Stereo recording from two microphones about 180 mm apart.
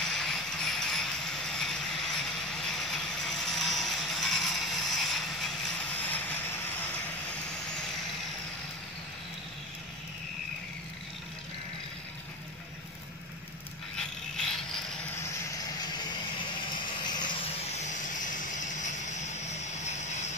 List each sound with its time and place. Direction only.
0.0 s music: centre (ahead or behind)
6.0 s vehicle: 10° left (ahead or behind)
16.8 s vehicle: 25° left (ahead or behind); by 20.2 s 40° left (ahead or behind)